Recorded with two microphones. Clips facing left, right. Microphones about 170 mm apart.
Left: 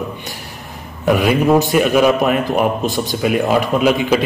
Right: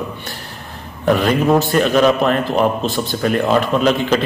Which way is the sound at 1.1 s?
10° left (ahead or behind).